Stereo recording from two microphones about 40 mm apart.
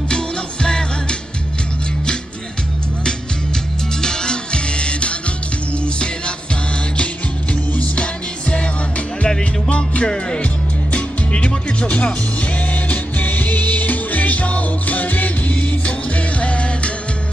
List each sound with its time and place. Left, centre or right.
0.1 s music: left
4.0 s music: centre
7.7 s music: left